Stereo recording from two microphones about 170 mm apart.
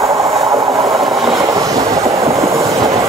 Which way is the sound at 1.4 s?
20° right (ahead or behind).